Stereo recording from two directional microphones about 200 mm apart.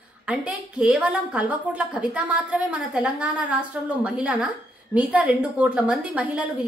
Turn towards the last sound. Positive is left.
turn(degrees=-5)  # may be behind; listen again after turning